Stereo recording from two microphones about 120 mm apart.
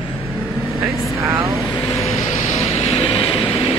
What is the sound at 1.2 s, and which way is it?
Vehicle, 25° right (ahead or behind).